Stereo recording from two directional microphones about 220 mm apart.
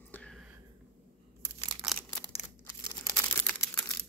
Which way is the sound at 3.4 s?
10° left (ahead or behind).